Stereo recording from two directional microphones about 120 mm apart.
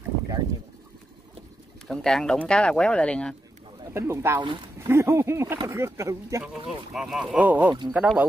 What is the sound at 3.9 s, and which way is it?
Speech, 20° right (ahead or behind).